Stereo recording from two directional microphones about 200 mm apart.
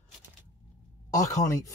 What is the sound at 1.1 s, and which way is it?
Speech, 15° left (ahead or behind).